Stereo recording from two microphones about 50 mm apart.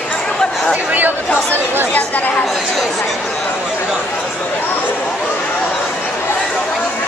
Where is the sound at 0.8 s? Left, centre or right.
Right.